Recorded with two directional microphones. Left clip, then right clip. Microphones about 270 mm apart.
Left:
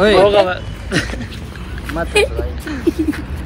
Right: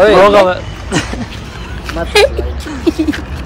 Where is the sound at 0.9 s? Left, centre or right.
Centre.